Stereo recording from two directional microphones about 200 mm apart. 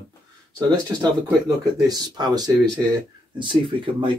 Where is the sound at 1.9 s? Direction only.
20° right (ahead or behind).